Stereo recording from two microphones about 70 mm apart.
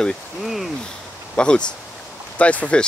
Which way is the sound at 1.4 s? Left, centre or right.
Centre.